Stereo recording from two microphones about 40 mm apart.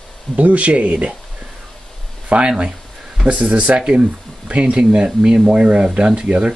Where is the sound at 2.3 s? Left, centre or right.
Right.